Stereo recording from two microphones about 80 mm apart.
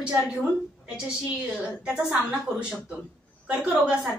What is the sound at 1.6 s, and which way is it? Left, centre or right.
A woman's voice, centre.